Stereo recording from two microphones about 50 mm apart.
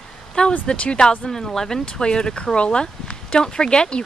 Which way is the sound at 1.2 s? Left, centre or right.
Centre.